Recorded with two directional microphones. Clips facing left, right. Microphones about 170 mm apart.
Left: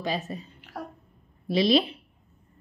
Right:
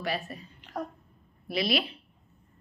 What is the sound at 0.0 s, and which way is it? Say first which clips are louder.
Speech: left 3 dB; 20° left (ahead or behind).